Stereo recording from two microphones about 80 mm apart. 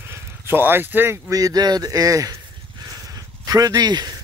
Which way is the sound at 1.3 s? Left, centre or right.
Right.